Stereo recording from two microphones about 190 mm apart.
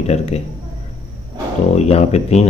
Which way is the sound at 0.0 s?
35° left (ahead or behind).